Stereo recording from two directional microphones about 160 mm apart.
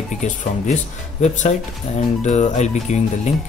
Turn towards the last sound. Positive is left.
turn(degrees=45)  # may be behind; listen again after turning